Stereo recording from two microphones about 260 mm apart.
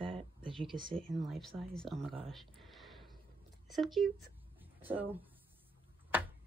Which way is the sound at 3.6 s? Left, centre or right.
Centre.